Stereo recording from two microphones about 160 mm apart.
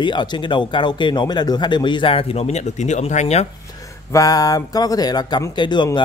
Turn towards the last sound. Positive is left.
turn(degrees=30)  # may be behind; listen again after turning